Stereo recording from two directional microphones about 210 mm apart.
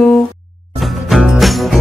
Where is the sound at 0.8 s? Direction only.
Centre (ahead or behind).